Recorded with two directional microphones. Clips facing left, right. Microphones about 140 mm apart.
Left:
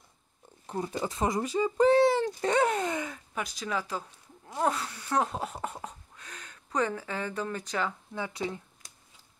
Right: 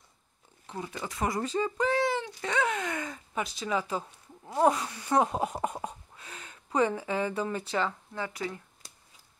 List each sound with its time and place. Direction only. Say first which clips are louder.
0.7 s speech: left 5 dB; 35° left (ahead or behind); by 1.7 s 15° left (ahead or behind)
1.8 s speech: left 8 dB; 30° left (ahead or behind)
2.2 s speech: left 4 dB; 45° left (ahead or behind)
3.0 s speech: right 1 dB; centre (ahead or behind)
8.1 s speech: left 1 dB; 15° left (ahead or behind)